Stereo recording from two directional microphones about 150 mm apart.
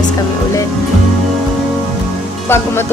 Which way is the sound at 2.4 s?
15° left (ahead or behind).